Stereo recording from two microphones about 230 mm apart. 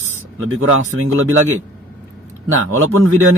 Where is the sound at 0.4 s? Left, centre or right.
Right.